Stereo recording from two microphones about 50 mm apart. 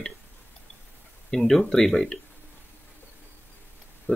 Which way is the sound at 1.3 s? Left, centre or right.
Centre.